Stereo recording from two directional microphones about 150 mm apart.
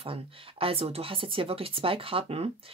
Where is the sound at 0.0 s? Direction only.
35° right (ahead or behind).